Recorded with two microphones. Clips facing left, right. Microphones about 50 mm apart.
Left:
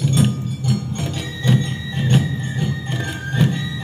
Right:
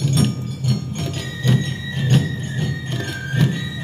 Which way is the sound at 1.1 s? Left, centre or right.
Left.